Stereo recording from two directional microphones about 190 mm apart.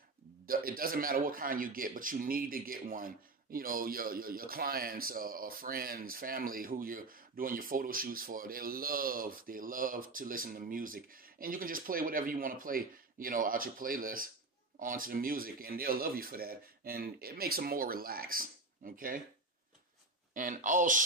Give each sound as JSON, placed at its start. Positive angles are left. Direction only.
{"t": 0.5, "sound": "a man's voice", "side_deg": -50}
{"t": 20.3, "sound": "a man's voice", "side_deg": -45}